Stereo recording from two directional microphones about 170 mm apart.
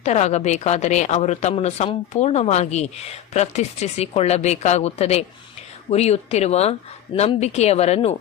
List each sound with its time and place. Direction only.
0.0 s speech: 40° left (ahead or behind)